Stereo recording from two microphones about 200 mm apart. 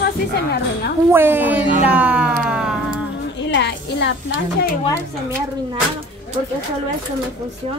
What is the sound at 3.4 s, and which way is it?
Speech, 60° left (ahead or behind).